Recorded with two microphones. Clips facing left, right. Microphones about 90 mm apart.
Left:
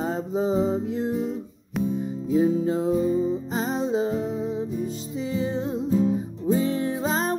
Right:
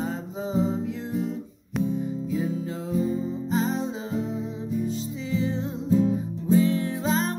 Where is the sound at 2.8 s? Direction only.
20° left (ahead or behind).